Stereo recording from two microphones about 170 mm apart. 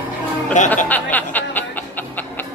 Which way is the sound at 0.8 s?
10° left (ahead or behind).